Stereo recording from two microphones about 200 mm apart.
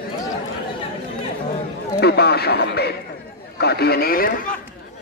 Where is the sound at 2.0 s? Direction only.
55° left (ahead or behind).